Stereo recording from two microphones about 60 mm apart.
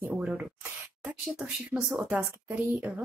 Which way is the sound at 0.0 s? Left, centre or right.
Right.